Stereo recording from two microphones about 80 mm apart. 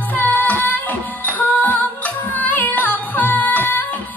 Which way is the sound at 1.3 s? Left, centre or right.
Left.